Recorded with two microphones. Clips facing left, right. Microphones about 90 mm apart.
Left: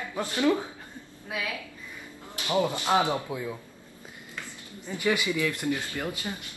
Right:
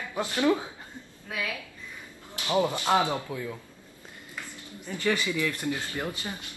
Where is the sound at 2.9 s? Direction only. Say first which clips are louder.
Left 3 dB; 20° left (ahead or behind).